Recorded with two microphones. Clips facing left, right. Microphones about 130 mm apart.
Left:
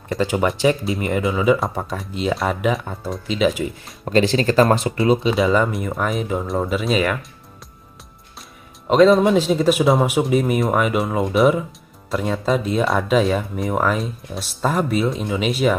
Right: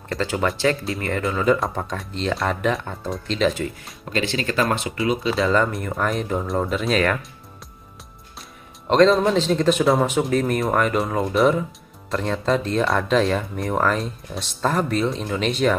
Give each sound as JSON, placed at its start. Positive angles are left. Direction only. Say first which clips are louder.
{"t": 0.2, "sound": "speech", "louder": "left 3 dB", "side_deg": 15}
{"t": 4.0, "sound": "speech", "louder": "left 7 dB", "side_deg": 35}
{"t": 5.4, "sound": "speech", "louder": "left 2 dB", "side_deg": 5}
{"t": 8.8, "sound": "speech", "louder": "left 3 dB", "side_deg": 5}